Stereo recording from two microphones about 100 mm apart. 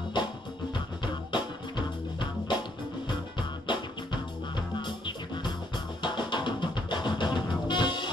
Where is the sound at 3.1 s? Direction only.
50° left (ahead or behind).